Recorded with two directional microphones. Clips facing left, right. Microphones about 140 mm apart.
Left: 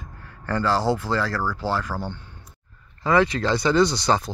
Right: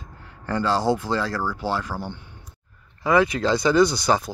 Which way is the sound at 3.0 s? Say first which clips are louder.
Right 1 dB; 15° right (ahead or behind).